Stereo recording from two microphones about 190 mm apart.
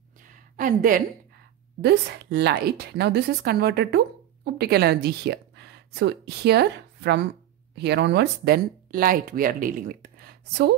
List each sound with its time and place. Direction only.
0.6 s a woman's voice: 45° right (ahead or behind)
1.8 s a woman's voice: 60° right (ahead or behind)